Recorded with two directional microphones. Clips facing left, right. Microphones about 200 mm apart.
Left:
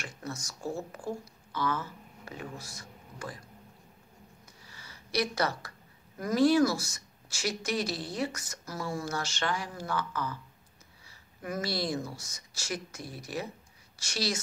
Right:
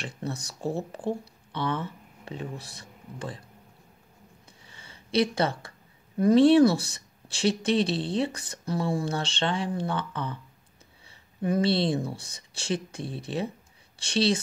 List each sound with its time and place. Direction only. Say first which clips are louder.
0.2 s speech: right 6 dB; 35° right (ahead or behind)
4.6 s a sound: right 5 dB; 25° right (ahead or behind)
6.1 s speech: right 7 dB; 30° right (ahead or behind)
11.4 s speech: right 8 dB; 30° right (ahead or behind)